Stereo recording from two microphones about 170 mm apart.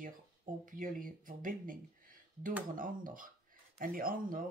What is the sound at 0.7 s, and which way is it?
Speech, 50° right (ahead or behind).